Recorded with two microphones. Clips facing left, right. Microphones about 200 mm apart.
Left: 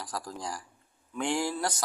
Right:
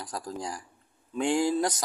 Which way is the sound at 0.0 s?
15° right (ahead or behind).